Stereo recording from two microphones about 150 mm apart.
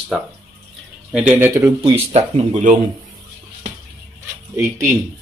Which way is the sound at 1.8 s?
40° right (ahead or behind).